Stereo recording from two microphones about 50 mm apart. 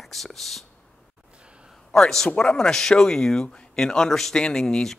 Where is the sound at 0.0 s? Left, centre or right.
Centre.